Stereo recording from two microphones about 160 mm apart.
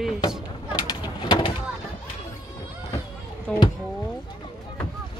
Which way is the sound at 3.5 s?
5° left (ahead or behind).